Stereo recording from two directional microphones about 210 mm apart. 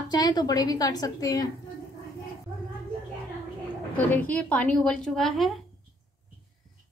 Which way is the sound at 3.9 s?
5° left (ahead or behind).